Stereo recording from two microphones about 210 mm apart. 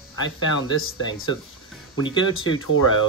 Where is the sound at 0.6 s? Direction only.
75° left (ahead or behind).